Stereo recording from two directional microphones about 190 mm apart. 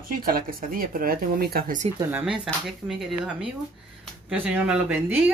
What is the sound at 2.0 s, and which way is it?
Speech, 5° right (ahead or behind).